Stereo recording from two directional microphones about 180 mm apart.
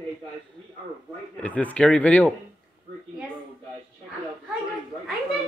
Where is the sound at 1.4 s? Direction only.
10° left (ahead or behind).